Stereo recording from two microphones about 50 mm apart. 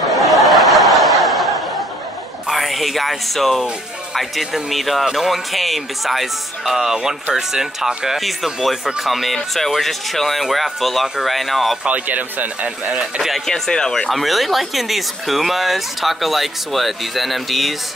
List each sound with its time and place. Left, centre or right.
0.2 s snicker: centre
2.5 s speech: centre
11.8 s speech: right
13.0 s speech: centre
13.5 s speech: centre
14.1 s speech: centre